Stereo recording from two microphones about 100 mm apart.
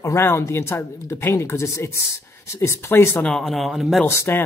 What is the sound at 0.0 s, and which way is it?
Speech, 25° left (ahead or behind).